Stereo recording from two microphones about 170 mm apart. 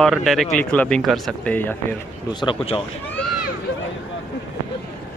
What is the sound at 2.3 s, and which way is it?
Speech, 30° left (ahead or behind).